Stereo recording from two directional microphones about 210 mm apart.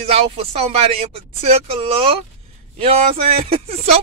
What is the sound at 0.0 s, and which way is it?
Speech, 30° right (ahead or behind).